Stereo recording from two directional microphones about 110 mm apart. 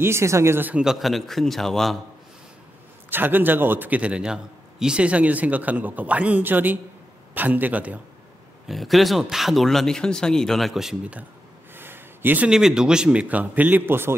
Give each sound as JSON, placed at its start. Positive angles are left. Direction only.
{"t": 0.0, "sound": "speech", "side_deg": -25}
{"t": 0.8, "sound": "speech", "side_deg": 0}
{"t": 3.1, "sound": "a man's voice", "side_deg": -20}
{"t": 8.6, "sound": "speech", "side_deg": 0}
{"t": 11.7, "sound": "a sound", "side_deg": -20}
{"t": 12.4, "sound": "a man's voice", "side_deg": -5}